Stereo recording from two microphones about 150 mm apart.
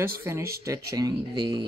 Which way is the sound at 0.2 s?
15° right (ahead or behind).